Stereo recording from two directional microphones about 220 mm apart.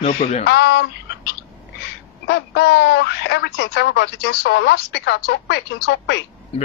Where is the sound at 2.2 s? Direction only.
50° left (ahead or behind).